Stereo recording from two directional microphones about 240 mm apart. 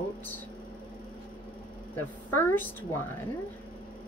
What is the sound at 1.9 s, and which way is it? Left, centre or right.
Speech, centre.